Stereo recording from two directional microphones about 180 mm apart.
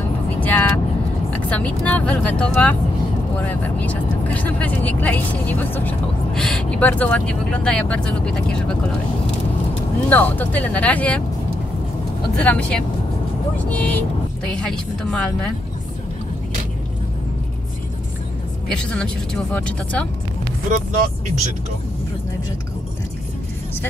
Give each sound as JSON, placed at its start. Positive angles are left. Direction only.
{"t": 0.4, "sound": "vehicle", "side_deg": 10}
{"t": 1.3, "sound": "speech", "side_deg": 10}
{"t": 10.0, "sound": "speech", "side_deg": 10}
{"t": 12.4, "sound": "speech", "side_deg": 5}
{"t": 18.9, "sound": "speech", "side_deg": 5}
{"t": 20.7, "sound": "speech", "side_deg": -45}